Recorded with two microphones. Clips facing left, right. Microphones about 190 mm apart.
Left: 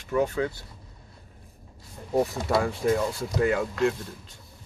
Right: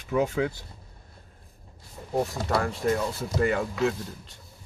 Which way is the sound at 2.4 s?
5° left (ahead or behind).